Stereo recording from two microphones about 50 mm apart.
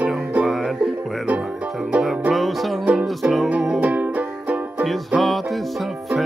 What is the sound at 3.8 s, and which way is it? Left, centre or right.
Music, right.